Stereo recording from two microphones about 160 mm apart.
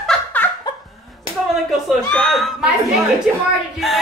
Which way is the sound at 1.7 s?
Centre (ahead or behind).